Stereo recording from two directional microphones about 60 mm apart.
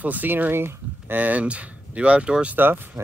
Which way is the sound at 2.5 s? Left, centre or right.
Right.